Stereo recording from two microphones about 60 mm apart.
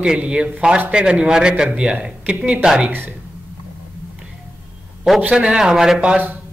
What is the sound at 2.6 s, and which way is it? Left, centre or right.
Speech, centre.